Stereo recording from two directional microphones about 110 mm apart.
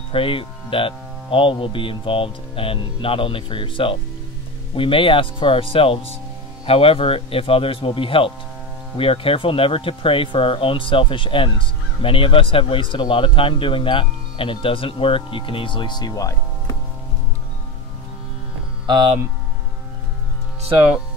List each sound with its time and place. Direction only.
0.1 s speech: 55° left (ahead or behind); by 16.7 s 30° left (ahead or behind)
18.9 s speech: 50° right (ahead or behind)